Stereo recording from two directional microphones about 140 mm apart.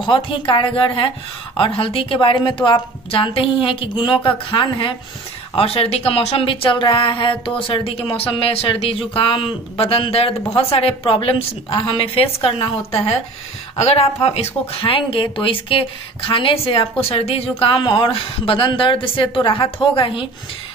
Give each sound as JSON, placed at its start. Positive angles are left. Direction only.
{"t": 0.0, "sound": "speech", "side_deg": 35}